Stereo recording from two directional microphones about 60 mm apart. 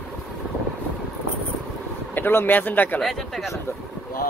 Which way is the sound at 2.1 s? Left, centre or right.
Left.